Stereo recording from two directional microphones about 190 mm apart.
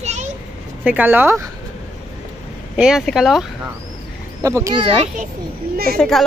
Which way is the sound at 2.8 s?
Centre (ahead or behind).